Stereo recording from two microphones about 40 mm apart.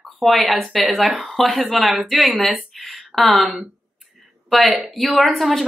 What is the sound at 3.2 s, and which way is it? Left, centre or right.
A woman's voice, centre.